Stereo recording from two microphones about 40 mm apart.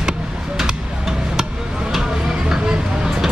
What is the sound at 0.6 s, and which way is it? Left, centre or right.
Music, centre.